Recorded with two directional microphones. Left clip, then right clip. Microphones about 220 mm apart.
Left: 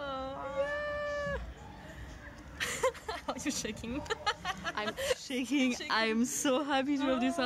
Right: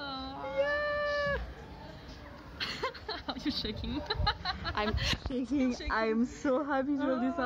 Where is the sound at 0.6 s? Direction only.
5° right (ahead or behind).